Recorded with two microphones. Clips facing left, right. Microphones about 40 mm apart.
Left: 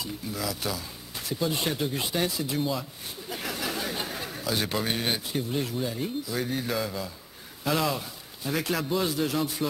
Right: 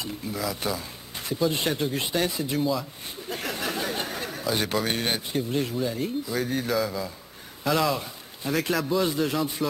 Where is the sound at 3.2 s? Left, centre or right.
Centre.